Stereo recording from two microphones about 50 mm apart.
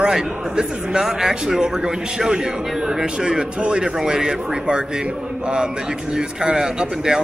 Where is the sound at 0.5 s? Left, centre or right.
Centre.